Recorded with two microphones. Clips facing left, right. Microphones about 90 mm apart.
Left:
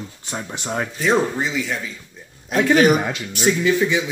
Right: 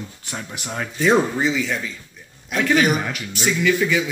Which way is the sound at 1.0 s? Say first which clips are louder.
Right 2 dB; centre (ahead or behind).